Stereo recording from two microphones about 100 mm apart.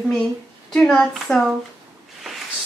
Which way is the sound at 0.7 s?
5° left (ahead or behind).